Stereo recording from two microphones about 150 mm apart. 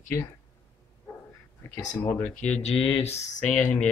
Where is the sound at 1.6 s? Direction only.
15° left (ahead or behind).